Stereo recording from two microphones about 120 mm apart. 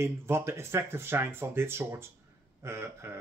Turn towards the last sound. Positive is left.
turn(degrees=-20)  # may be behind; listen again after turning